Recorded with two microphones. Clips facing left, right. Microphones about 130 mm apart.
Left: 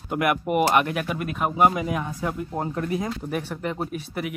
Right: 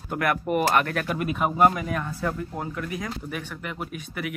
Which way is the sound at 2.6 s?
35° left (ahead or behind).